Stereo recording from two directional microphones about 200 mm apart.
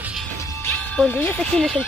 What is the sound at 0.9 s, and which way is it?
Speech, 10° left (ahead or behind).